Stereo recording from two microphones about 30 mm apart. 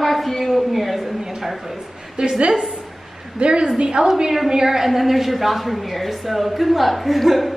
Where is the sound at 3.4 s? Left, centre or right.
Right; by 7.6 s centre.